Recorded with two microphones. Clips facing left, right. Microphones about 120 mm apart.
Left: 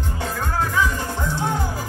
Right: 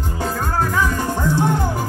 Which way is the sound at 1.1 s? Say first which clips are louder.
Right 6 dB; 55° right (ahead or behind).